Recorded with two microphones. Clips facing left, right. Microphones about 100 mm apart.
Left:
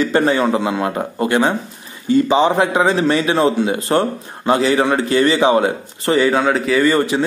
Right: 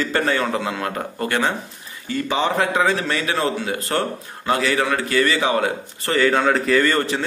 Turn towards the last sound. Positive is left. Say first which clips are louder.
# left 4 dB
turn(degrees=15)  # may be behind; listen again after turning